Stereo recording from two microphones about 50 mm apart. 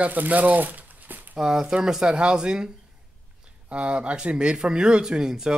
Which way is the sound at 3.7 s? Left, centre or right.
Right.